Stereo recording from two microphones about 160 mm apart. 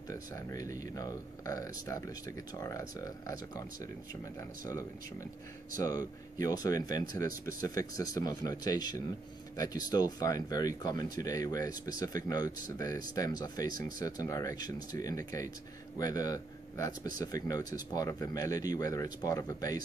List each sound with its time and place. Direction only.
0.1 s speech: 20° left (ahead or behind)
13.7 s speech: 60° right (ahead or behind)
13.9 s speech: 20° left (ahead or behind)